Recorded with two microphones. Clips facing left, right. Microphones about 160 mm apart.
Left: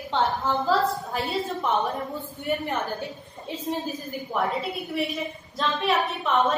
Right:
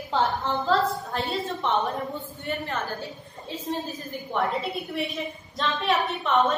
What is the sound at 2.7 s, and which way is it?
Speech, 20° left (ahead or behind).